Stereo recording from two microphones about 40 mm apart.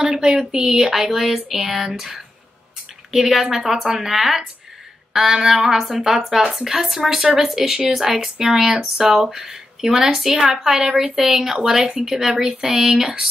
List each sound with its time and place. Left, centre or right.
0.0 s a woman's voice: centre